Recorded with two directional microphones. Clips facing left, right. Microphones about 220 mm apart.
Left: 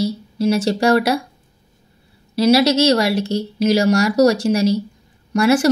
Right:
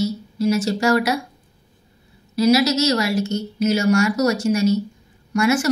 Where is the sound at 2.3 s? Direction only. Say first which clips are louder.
Left 3 dB; 30° left (ahead or behind).